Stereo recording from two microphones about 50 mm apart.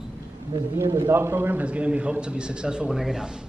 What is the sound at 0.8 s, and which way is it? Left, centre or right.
Speech, right.